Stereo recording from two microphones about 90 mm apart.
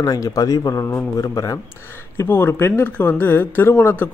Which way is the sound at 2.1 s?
25° left (ahead or behind).